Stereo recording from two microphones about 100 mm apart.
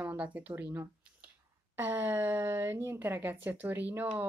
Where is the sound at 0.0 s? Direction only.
15° right (ahead or behind).